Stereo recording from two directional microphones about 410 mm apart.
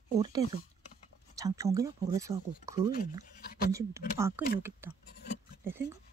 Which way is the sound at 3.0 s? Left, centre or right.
Left.